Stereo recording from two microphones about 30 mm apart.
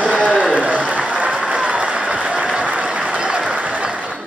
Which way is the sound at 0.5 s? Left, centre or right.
Right.